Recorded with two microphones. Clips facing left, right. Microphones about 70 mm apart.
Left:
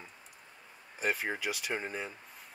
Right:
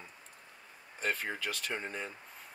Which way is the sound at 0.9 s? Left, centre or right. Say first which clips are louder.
Left 2 dB; centre.